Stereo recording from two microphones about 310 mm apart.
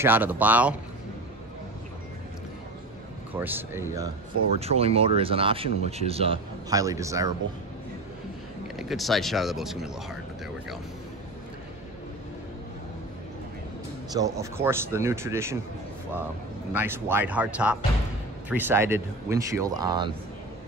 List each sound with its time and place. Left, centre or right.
0.0 s speech: centre
3.3 s speech: centre
4.6 s speech: centre
8.7 s speech: centre
14.1 s speech: centre
16.7 s speech: centre